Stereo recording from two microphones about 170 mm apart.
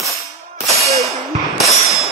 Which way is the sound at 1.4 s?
Centre (ahead or behind).